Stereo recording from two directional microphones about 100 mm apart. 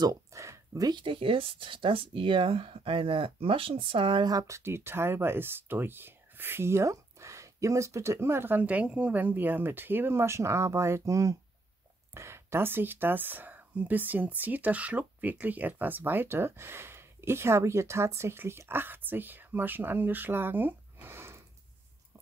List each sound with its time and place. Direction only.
0.0 s a sound: 30° right (ahead or behind)
0.9 s speech: 60° right (ahead or behind)
4.2 s speech: 40° right (ahead or behind)